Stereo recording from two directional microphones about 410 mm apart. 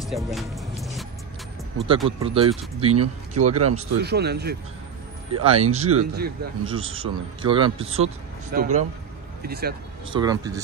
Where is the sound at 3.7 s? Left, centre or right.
Right.